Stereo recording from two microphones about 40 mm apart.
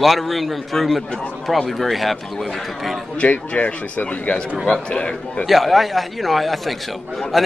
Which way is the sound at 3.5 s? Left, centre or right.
Left.